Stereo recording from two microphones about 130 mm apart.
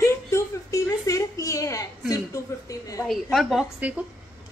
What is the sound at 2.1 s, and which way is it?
Speech, 25° left (ahead or behind).